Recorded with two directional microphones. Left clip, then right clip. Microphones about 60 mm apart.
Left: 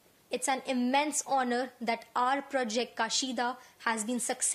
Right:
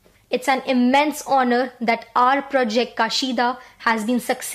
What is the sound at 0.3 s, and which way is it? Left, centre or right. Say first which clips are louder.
A woman's voice: right 12 dB; left.